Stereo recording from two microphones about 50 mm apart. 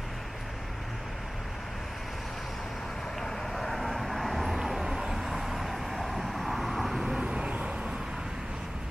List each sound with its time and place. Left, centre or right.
3.2 s vehicle: centre
7.1 s vehicle: centre